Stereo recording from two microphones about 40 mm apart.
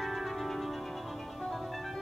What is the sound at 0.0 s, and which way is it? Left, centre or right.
Music, centre.